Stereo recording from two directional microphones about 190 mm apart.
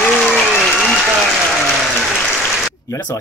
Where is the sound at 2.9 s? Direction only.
15° left (ahead or behind).